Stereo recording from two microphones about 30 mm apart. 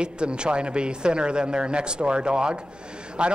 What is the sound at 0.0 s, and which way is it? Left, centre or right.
A man's voice, right.